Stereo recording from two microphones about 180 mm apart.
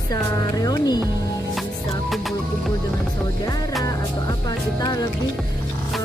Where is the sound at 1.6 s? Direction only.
Centre (ahead or behind).